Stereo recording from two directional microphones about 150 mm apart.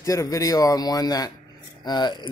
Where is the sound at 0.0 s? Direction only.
20° left (ahead or behind).